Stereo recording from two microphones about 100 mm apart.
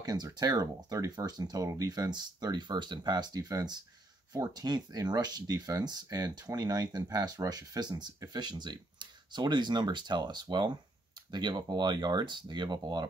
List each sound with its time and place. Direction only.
0.0 s speech: 40° right (ahead or behind)